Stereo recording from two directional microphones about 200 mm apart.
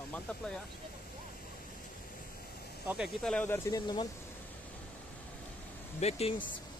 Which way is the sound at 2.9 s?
Centre (ahead or behind).